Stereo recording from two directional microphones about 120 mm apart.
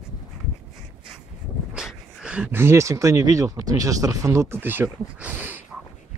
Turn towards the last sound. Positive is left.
turn(degrees=-15)  # may be behind; listen again after turning